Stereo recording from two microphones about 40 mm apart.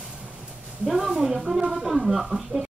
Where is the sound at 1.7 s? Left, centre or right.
Centre.